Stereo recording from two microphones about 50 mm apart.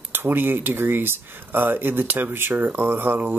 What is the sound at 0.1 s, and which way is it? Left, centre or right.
Speech, right.